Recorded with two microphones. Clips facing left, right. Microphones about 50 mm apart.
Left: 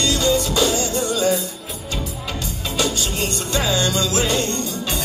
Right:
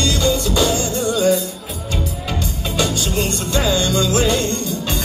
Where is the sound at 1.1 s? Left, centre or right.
Centre.